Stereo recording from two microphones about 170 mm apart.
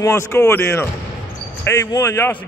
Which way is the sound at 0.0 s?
15° left (ahead or behind).